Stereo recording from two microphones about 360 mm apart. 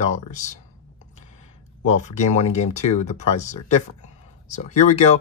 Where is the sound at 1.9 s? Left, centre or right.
Centre.